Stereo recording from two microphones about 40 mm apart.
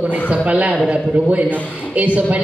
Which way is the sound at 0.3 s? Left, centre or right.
Right.